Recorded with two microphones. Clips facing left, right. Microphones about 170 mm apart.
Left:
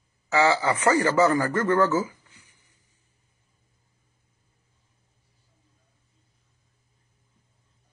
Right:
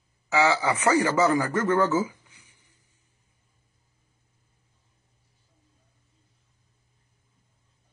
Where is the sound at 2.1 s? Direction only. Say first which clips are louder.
Even; 10° right (ahead or behind).